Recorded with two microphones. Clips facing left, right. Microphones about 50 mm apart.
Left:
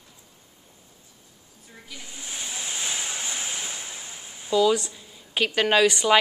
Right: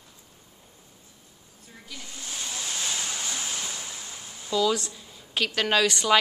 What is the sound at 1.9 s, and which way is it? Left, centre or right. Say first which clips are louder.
Waves: even; centre.